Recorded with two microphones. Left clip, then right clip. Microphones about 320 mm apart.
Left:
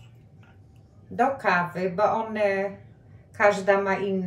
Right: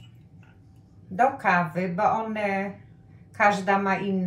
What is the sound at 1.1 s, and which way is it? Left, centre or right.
A woman's voice, centre.